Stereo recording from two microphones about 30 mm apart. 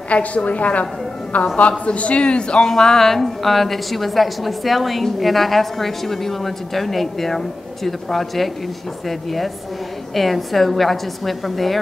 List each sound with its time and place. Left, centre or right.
0.1 s a woman's voice: left
2.6 s a woman's voice: centre